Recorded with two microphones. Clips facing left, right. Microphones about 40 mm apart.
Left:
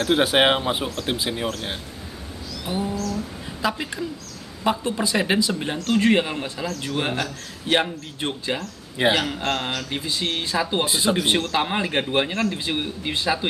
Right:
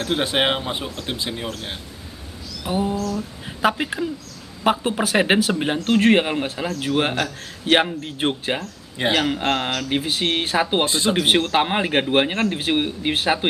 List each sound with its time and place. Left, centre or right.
0.0 s speech: centre
2.6 s speech: right
4.7 s speech: right
5.1 s speech: right
8.9 s a man's voice: centre
9.3 s speech: right